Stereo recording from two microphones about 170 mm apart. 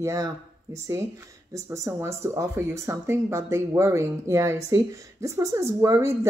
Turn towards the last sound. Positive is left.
turn(degrees=-20)  # may be behind; listen again after turning